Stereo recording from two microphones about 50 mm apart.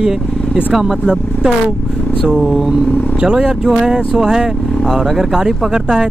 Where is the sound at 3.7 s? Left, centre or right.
Centre.